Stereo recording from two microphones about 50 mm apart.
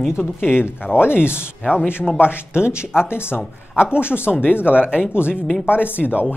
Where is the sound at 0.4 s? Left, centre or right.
Left.